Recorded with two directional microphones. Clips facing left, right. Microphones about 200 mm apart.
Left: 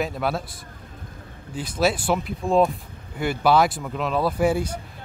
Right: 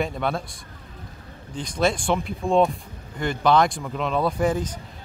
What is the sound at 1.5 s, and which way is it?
Speech, 5° left (ahead or behind).